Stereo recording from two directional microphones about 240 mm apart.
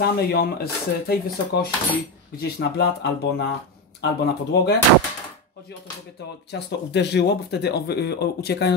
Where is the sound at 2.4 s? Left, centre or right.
Left.